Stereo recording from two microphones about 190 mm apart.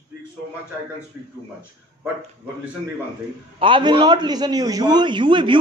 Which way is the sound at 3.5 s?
25° right (ahead or behind).